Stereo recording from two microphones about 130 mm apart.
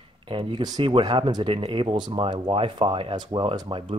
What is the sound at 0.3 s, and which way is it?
Speech, 40° right (ahead or behind).